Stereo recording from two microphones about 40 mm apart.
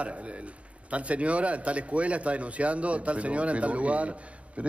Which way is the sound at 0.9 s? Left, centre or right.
Right.